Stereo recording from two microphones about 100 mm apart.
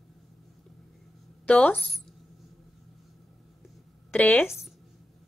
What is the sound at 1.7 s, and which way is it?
Speech, centre (ahead or behind).